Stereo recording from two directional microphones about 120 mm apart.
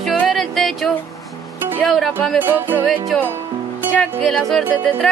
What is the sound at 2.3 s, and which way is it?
Music, 15° right (ahead or behind).